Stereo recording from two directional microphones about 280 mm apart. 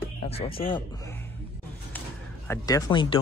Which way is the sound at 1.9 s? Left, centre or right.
Centre.